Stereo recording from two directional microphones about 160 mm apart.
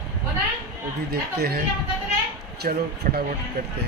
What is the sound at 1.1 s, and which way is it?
Speech, 75° right (ahead or behind).